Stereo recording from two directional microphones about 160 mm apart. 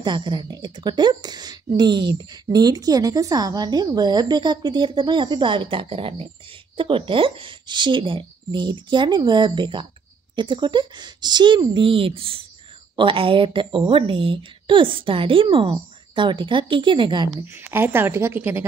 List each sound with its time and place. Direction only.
0.0 s a woman's voice: 30° right (ahead or behind)
17.5 s a woman's voice: 15° right (ahead or behind)